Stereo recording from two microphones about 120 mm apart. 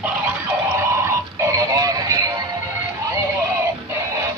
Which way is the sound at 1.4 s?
30° right (ahead or behind).